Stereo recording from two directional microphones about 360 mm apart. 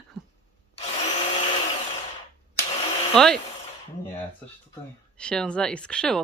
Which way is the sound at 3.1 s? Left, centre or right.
Centre.